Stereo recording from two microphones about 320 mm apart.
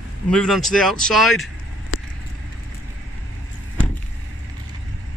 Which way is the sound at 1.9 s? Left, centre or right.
Left.